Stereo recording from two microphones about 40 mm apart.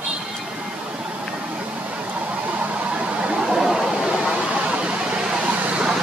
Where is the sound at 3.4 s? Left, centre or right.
Centre.